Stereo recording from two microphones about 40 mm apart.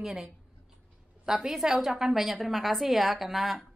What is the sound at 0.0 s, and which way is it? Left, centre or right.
A woman's voice, centre.